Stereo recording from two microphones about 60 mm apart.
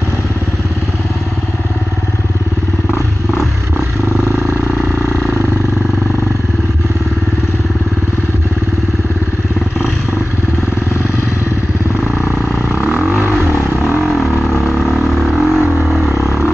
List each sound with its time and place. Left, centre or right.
12.3 s vehicle: right
12.8 s vehicle: right
14.9 s vehicle: centre